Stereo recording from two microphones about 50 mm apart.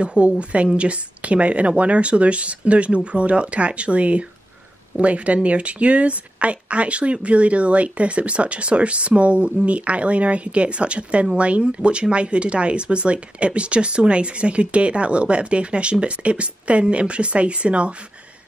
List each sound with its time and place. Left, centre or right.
0.0 s speech: right